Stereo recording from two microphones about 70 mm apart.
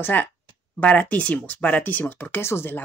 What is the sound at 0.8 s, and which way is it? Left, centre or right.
Speech, left.